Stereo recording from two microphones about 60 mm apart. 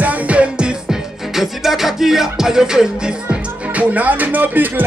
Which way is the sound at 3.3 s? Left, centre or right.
Right.